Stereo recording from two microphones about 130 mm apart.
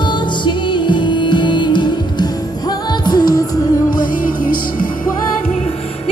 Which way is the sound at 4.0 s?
90° left.